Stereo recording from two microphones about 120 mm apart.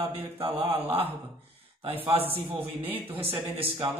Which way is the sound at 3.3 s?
45° right (ahead or behind).